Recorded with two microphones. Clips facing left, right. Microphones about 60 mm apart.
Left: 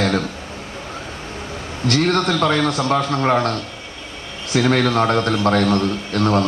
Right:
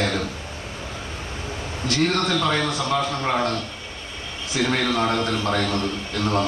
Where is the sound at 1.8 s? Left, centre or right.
Left.